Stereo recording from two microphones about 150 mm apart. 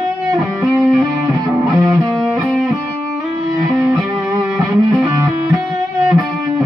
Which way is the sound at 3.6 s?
20° right (ahead or behind).